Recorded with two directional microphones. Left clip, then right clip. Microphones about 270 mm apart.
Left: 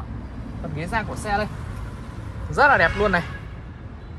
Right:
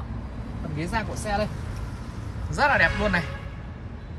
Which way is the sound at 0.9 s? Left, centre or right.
Centre.